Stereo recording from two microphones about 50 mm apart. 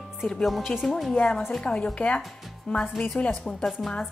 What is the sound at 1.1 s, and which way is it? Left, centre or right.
A woman's voice, left.